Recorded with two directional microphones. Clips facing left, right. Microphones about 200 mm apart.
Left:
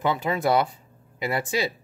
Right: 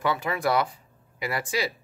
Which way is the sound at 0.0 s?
20° left (ahead or behind).